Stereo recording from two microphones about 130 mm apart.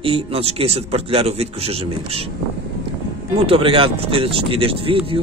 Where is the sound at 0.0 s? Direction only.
45° right (ahead or behind).